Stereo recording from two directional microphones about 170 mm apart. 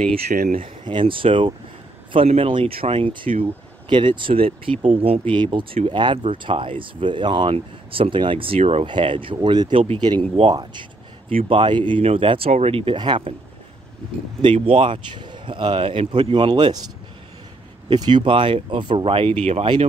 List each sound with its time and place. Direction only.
0.3 s speech: 55° right (ahead or behind)
0.8 s speech: 30° right (ahead or behind)
14.4 s speech: 35° right (ahead or behind)
17.8 s speech: 25° right (ahead or behind)